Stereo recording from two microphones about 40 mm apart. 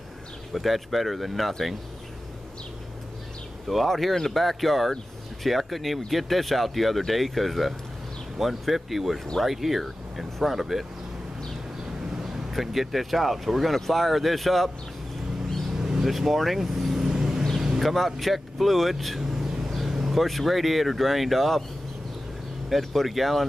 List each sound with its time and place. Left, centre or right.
0.5 s speech: centre
3.6 s speech: centre
12.2 s speech: centre
15.8 s vehicle: centre
16.1 s speech: centre
17.7 s speech: centre
22.7 s speech: centre